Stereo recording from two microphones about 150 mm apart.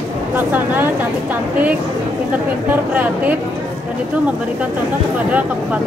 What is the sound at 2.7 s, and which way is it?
Speech, 10° right (ahead or behind).